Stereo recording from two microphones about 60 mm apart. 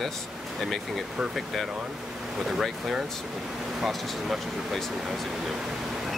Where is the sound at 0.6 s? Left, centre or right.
Centre.